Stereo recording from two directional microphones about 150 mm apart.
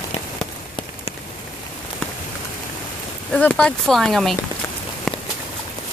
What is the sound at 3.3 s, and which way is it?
Speech, 5° left (ahead or behind).